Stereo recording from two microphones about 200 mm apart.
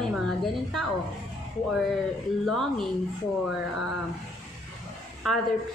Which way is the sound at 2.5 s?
Centre (ahead or behind).